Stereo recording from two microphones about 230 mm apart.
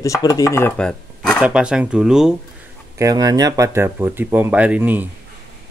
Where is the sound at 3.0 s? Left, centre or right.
Centre.